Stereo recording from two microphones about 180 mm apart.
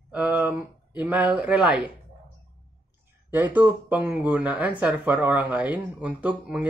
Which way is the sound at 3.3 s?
10° right (ahead or behind).